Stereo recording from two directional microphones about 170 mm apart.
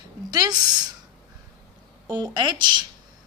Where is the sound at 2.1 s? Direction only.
25° right (ahead or behind).